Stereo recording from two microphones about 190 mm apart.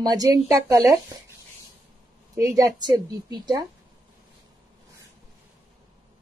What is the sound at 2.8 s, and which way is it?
Speech, 20° right (ahead or behind).